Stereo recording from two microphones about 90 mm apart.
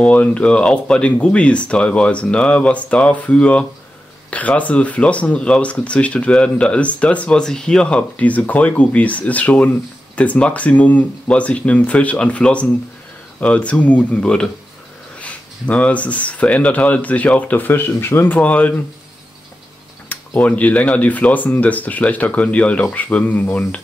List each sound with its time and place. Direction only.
0.0 s speech: 15° left (ahead or behind)
20.1 s speech: 15° left (ahead or behind)